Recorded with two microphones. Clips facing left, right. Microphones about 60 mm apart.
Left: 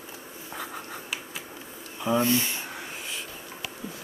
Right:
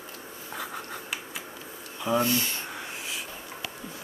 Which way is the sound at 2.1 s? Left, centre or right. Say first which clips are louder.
Left 1 dB; left.